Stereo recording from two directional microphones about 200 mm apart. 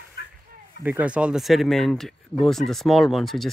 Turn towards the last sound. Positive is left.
turn(degrees=0)  # may be behind; listen again after turning